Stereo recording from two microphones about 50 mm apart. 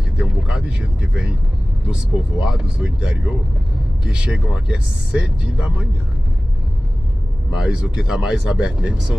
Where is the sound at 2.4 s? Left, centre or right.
Centre.